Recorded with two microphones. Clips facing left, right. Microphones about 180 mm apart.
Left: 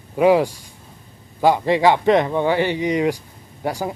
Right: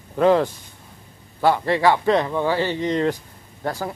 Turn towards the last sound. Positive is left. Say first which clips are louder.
# left 2 dB
turn(degrees=15)  # may be behind; listen again after turning